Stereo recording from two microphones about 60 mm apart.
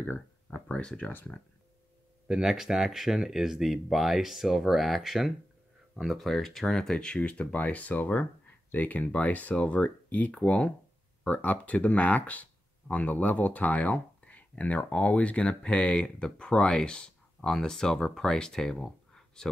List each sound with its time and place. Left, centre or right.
0.0 s a sound: left
0.7 s speech: left
2.2 s speech: centre